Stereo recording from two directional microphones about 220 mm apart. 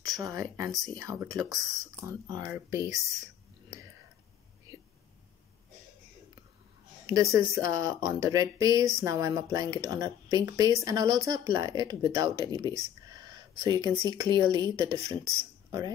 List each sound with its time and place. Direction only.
0.2 s speech: 15° right (ahead or behind)
0.7 s speech: centre (ahead or behind)
0.9 s speech: 15° right (ahead or behind)
7.1 s speech: 15° right (ahead or behind)
12.6 s a sound: 20° right (ahead or behind)
14.1 s speech: 20° right (ahead or behind)